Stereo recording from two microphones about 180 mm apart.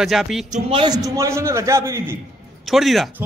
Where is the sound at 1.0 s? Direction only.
15° right (ahead or behind).